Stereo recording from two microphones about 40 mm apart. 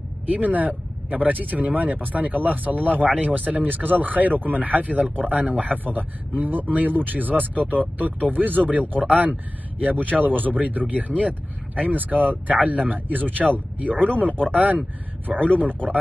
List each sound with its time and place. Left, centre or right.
0.3 s speech: right
15.3 s a man's voice: left